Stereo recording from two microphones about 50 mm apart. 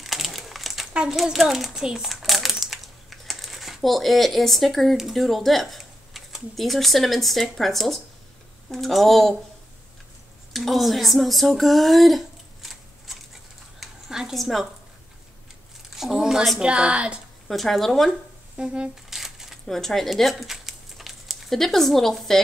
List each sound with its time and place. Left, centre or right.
0.0 s crumpling: centre
1.0 s speech: centre
1.7 s a child's voice: centre
2.0 s crumpling: centre
4.9 s speech: centre
10.5 s speech: centre
13.7 s a sound: centre
14.3 s speech: centre
15.9 s a sound: centre
16.5 s speech: right
17.5 s speech: centre
18.6 s speech: centre
19.0 s a sound: centre
19.6 s speech: centre